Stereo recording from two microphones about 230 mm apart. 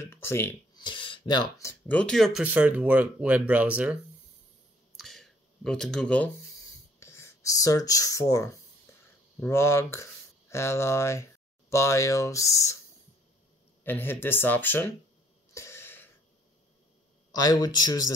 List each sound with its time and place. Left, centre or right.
0.0 s speech: centre
4.9 s a sound: centre
7.0 s speech: centre
13.8 s speech: centre
15.5 s cough: centre
17.3 s speech: centre